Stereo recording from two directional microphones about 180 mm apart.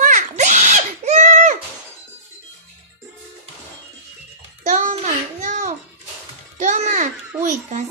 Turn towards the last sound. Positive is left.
turn(degrees=-40)  # may be behind; listen again after turning